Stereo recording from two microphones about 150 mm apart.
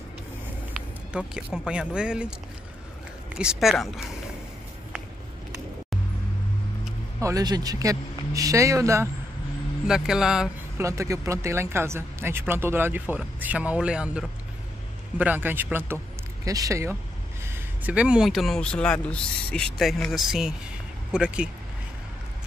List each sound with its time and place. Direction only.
0.7 s speech: 5° right (ahead or behind)
3.3 s speech: 5° right (ahead or behind)
7.2 s a man's voice: 20° right (ahead or behind)
9.8 s speech: 5° right (ahead or behind)
10.8 s a man's voice: 20° right (ahead or behind)
17.5 s speech: 10° right (ahead or behind)